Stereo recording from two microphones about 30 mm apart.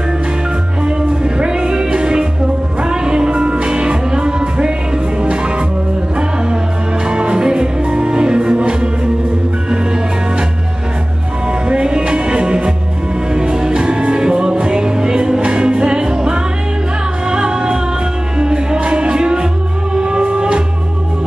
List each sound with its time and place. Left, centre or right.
0.8 s music: right
7.1 s music: right
11.7 s music: right